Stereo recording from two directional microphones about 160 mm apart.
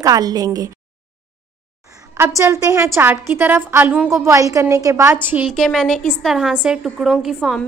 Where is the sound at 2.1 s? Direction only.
15° right (ahead or behind).